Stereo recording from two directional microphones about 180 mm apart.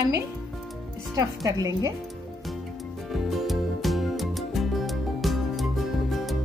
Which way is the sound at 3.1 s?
Centre (ahead or behind).